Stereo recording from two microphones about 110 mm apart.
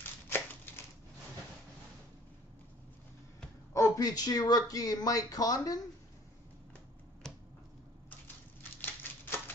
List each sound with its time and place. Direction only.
0.0 s a sound: 20° left (ahead or behind)
3.7 s speech: 30° left (ahead or behind)
7.2 s finger snapping: 5° left (ahead or behind)
8.8 s typewriter: 20° left (ahead or behind)